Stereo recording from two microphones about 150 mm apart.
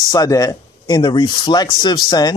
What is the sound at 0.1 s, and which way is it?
Speech, 25° left (ahead or behind).